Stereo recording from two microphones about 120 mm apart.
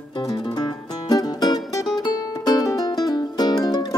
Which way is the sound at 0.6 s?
35° left (ahead or behind).